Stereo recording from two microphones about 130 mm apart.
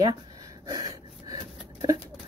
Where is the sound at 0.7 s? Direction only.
30° right (ahead or behind).